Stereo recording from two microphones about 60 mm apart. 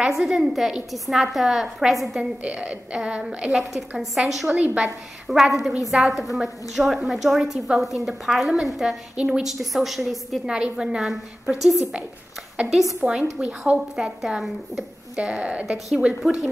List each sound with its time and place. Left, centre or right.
0.2 s a woman's voice: centre
2.4 s a woman's voice: centre
4.5 s a woman's voice: right
5.3 s a woman's voice: centre
13.0 s a woman's voice: centre
13.9 s a woman's voice: centre
15.1 s a woman's voice: centre
16.2 s a woman's voice: centre